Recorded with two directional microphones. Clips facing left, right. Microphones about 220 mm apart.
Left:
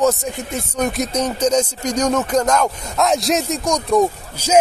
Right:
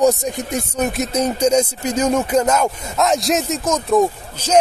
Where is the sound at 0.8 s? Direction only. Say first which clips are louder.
Even; 5° right (ahead or behind).